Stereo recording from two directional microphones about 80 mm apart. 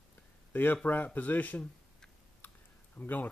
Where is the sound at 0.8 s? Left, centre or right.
Left.